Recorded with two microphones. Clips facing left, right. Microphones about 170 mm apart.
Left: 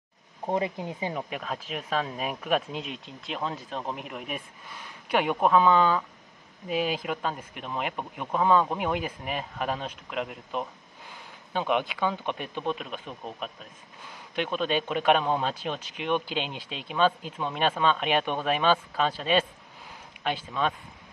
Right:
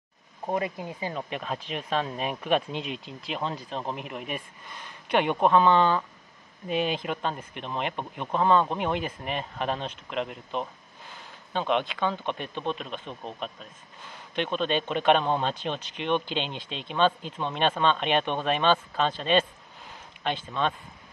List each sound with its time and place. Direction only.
0.5 s speech: 20° left (ahead or behind)
1.3 s speech: centre (ahead or behind)